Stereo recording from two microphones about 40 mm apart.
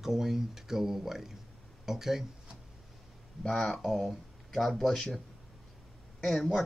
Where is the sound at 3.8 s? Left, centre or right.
Centre.